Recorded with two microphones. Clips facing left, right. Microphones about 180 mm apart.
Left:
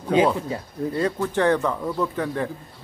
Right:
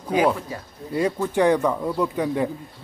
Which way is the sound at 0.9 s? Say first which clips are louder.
Right 3 dB; 10° right (ahead or behind).